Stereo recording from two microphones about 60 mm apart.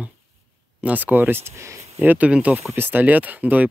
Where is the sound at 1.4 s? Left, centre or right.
Right.